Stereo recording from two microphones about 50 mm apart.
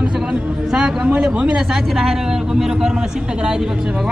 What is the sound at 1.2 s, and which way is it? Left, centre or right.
Speech, right.